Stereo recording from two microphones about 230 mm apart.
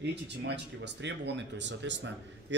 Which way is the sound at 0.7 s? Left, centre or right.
Right.